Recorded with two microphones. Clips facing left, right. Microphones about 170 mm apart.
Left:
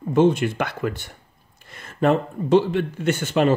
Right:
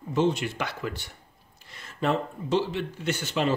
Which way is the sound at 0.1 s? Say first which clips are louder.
Left 7 dB; 50° left (ahead or behind).